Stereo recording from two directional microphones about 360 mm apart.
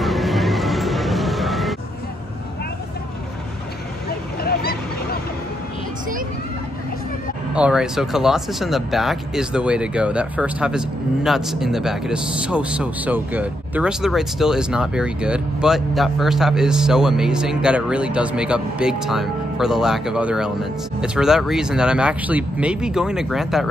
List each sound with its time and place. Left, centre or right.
0.0 s music: centre
4.1 s vehicle: left
7.5 s speech: centre